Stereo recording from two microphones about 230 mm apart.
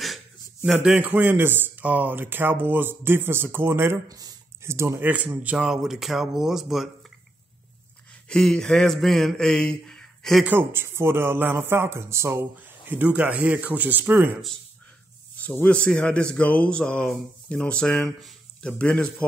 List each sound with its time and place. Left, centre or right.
0.7 s speech: centre
8.3 s speech: centre